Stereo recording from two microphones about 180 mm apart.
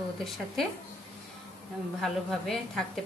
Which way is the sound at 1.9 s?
Centre (ahead or behind).